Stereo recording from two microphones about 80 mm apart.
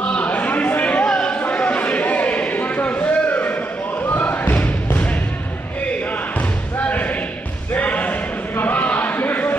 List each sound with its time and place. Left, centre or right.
0.0 s livestock: centre
4.1 s thump: left
6.9 s basketball bounce: centre
7.7 s a sound: centre